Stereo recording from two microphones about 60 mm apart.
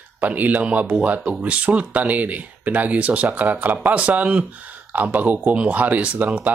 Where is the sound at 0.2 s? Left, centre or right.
Right.